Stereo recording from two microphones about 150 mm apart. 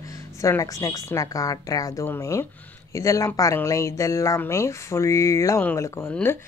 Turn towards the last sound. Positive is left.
turn(degrees=15)  # may be behind; listen again after turning